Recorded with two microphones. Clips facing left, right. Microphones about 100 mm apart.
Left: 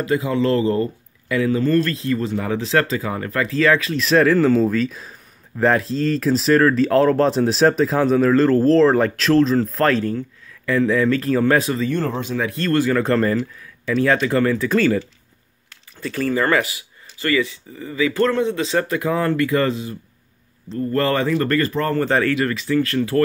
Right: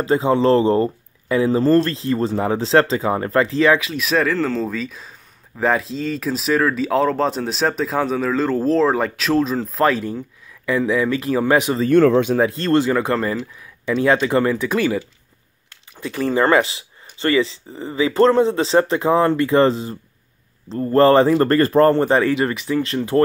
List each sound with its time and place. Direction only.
0.0 s speech: 30° right (ahead or behind)
4.0 s speech: centre (ahead or behind)
11.9 s speech: 65° right (ahead or behind)
12.4 s speech: 25° right (ahead or behind)
13.8 s speech: 20° right (ahead or behind); by 21.9 s 40° right (ahead or behind)
21.9 s speech: 20° right (ahead or behind)